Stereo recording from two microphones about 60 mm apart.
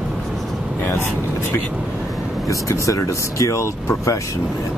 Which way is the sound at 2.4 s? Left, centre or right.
Left.